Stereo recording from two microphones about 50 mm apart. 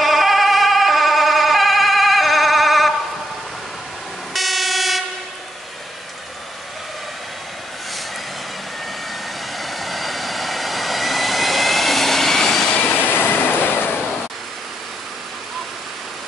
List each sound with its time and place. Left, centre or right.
0.0 s emergency vehicle: centre
4.3 s vehicle: centre
9.6 s vehicle: centre
12.8 s train: left